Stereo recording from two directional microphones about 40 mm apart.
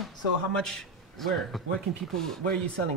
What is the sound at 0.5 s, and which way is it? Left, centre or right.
A man's voice, centre.